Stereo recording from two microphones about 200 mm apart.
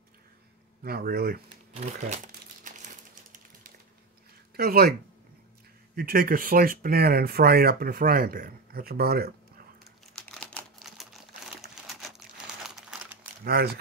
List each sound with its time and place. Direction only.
0.8 s speech: 50° right (ahead or behind)
1.7 s crumpling: 35° right (ahead or behind)
4.6 s speech: 50° right (ahead or behind)
5.9 s speech: 50° right (ahead or behind)
10.1 s typing: 5° left (ahead or behind)
12.6 s crumpling: 5° right (ahead or behind)
13.4 s speech: 50° right (ahead or behind)